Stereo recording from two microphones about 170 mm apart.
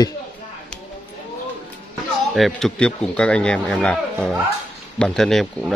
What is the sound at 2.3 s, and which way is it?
Speech, centre (ahead or behind).